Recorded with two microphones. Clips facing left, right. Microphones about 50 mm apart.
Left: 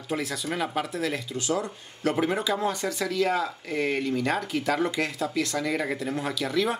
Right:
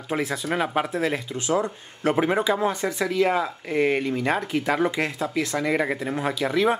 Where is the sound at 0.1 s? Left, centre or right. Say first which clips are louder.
Right 4 dB; right.